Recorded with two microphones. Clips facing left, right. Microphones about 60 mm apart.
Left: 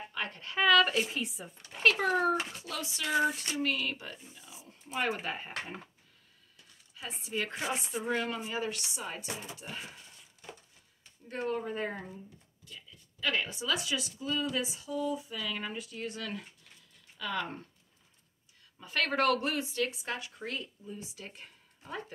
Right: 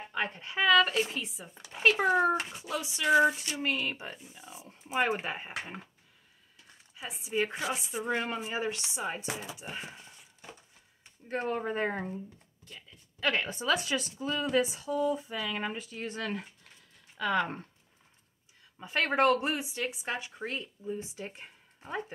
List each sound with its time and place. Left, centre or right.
0.1 s speech: right
0.6 s speech: centre
1.8 s a child's voice: centre
3.5 s a child's voice: right
7.0 s a child's voice: centre
8.1 s a child's voice: right
11.2 s speech: right
18.8 s speech: right